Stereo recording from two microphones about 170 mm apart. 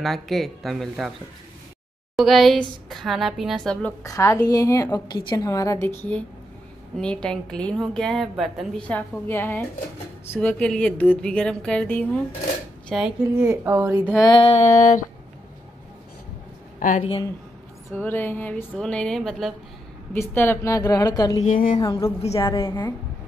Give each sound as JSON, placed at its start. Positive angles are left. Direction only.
{"t": 0.0, "sound": "a woman's voice", "side_deg": 0}
{"t": 2.1, "sound": "a woman's voice", "side_deg": 0}
{"t": 4.0, "sound": "a woman's voice", "side_deg": 15}
{"t": 13.5, "sound": "speech", "side_deg": -15}
{"t": 14.2, "sound": "a sound", "side_deg": 30}
{"t": 17.9, "sound": "speech", "side_deg": 10}
{"t": 20.1, "sound": "a woman's voice", "side_deg": 15}
{"t": 21.5, "sound": "a woman's voice", "side_deg": 50}
{"t": 21.7, "sound": "a woman's voice", "side_deg": 20}